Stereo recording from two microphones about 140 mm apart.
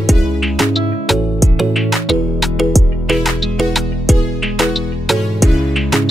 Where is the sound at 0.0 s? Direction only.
Centre (ahead or behind).